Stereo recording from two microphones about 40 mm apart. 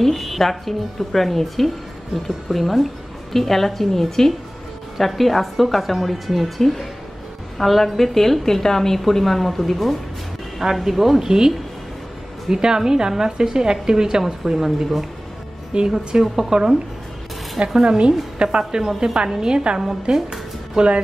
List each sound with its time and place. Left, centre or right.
0.0 s a woman's voice: centre
10.6 s a woman's voice: centre
15.7 s a woman's voice: right
17.8 s a woman's voice: right
19.4 s a woman's voice: right
19.8 s a woman's voice: centre
20.2 s a sound: right